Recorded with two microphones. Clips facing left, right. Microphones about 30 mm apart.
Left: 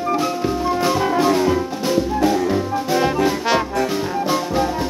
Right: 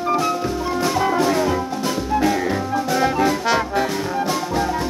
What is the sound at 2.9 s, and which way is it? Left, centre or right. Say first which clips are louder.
Music: left 1 dB; centre.